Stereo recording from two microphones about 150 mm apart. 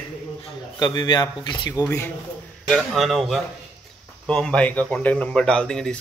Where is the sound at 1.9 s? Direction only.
10° left (ahead or behind).